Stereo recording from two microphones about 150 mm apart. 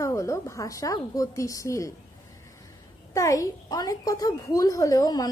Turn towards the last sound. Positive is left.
turn(degrees=25)  # may be behind; listen again after turning